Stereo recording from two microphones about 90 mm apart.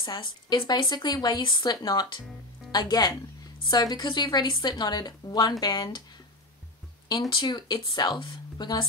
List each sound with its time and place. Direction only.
0.0 s a woman's voice: 55° left (ahead or behind)
7.2 s speech: 60° left (ahead or behind)